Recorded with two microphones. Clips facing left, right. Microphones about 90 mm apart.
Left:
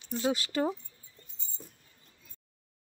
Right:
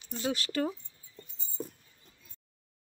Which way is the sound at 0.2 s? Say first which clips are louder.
Left 2 dB; 20° left (ahead or behind).